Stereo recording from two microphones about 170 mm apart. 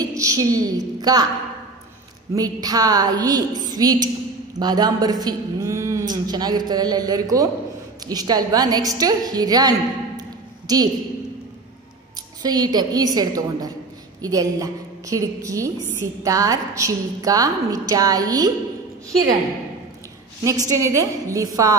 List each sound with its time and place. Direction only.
0.0 s a woman's voice: 20° right (ahead or behind)
2.3 s a woman's voice: 20° right (ahead or behind)
12.4 s a woman's voice: 25° right (ahead or behind)
20.4 s a woman's voice: 20° right (ahead or behind)